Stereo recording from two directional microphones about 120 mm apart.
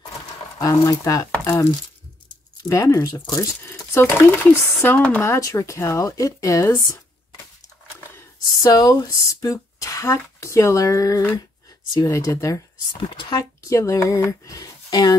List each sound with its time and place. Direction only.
0.6 s speech: 30° left (ahead or behind)
2.7 s speech: 25° left (ahead or behind)
5.2 s speech: 25° left (ahead or behind)
8.6 s speech: 30° left (ahead or behind)